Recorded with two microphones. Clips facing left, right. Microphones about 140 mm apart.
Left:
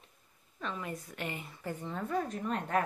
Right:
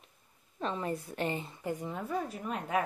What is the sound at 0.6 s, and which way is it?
Speech, 30° right (ahead or behind).